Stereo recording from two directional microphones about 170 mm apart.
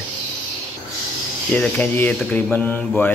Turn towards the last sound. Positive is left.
turn(degrees=10)  # may be behind; listen again after turning